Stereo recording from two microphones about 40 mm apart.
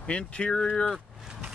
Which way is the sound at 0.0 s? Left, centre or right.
Left.